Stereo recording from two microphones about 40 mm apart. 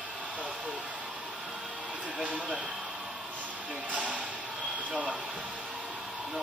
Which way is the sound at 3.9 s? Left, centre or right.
Right.